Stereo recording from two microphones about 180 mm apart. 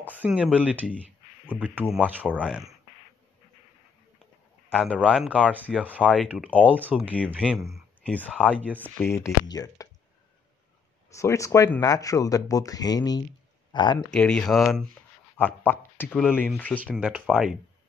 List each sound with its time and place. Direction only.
0.0 s speech: 10° right (ahead or behind)
4.8 s speech: 5° right (ahead or behind)
7.2 s speech: 5° left (ahead or behind)
8.4 s speech: 10° right (ahead or behind)
8.7 s speech: 10° left (ahead or behind)
11.1 s speech: 15° left (ahead or behind)
13.7 s a sound: 25° left (ahead or behind)
13.9 s speech: 5° left (ahead or behind)
15.3 s speech: 10° left (ahead or behind)
16.9 s speech: 5° right (ahead or behind)